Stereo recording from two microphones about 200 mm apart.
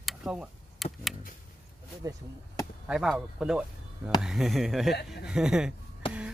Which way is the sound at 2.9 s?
5° right (ahead or behind).